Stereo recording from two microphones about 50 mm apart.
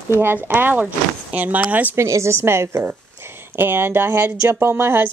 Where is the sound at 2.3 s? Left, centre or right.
Right.